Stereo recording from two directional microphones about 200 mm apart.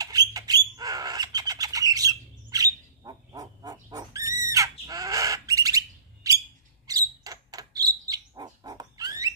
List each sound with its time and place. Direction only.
0.0 s bird: 20° right (ahead or behind)